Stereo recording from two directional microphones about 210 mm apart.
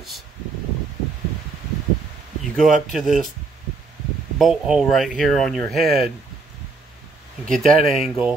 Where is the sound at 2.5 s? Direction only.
Centre (ahead or behind).